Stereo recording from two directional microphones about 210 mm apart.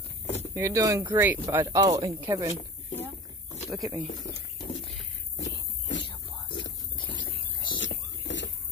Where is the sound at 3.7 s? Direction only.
10° right (ahead or behind).